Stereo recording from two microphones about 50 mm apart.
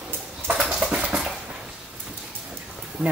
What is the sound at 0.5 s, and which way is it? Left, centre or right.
Dog, centre.